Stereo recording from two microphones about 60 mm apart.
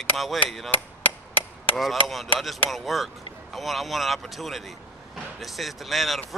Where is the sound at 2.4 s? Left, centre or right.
Centre.